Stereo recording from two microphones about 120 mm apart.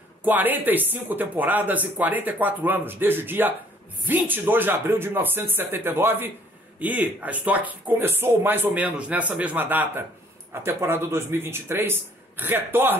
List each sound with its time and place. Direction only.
0.2 s a man's voice: 15° right (ahead or behind)